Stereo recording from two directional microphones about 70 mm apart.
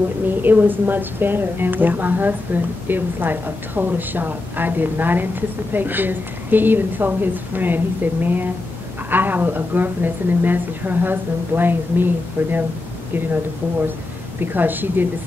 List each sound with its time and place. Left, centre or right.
0.3 s a woman's voice: right
14.4 s a woman's voice: right